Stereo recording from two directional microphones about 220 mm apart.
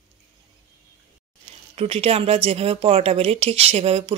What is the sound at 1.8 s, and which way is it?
Speech, 25° right (ahead or behind).